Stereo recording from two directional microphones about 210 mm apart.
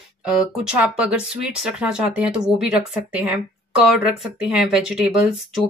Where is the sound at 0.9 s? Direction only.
5° right (ahead or behind).